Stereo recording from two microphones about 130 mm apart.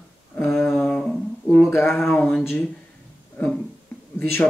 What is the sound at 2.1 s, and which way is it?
Speech, 5° left (ahead or behind).